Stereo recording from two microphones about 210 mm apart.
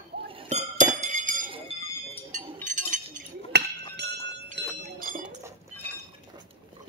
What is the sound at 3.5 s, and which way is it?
Chink, 50° right (ahead or behind).